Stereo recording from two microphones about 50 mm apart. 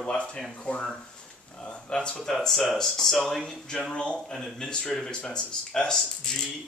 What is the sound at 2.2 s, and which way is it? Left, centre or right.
Speech, centre.